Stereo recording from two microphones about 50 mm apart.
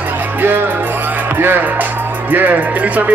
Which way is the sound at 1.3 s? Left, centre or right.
Right.